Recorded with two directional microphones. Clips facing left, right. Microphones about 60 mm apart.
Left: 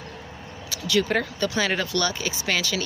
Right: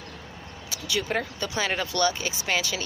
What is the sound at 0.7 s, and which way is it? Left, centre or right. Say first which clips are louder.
Vehicle: left 6 dB; right.